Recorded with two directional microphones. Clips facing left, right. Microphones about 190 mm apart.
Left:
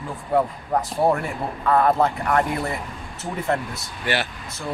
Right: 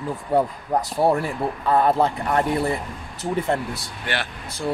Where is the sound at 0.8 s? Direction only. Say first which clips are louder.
Right 1 dB; 30° right (ahead or behind).